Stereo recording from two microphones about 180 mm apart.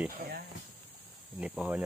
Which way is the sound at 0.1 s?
55° right (ahead or behind).